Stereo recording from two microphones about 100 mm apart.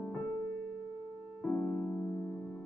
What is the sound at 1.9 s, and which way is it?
Music, 25° left (ahead or behind).